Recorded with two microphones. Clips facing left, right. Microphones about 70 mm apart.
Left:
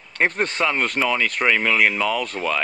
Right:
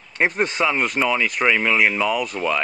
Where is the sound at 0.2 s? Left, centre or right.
Centre.